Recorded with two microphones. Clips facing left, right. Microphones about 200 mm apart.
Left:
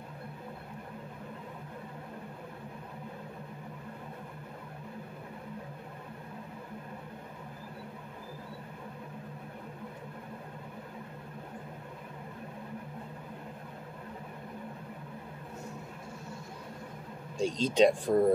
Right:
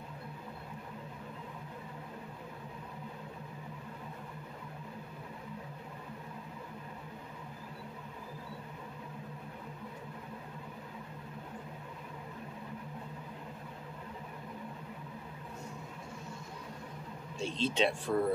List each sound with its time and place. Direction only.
17.4 s speech: 40° left (ahead or behind)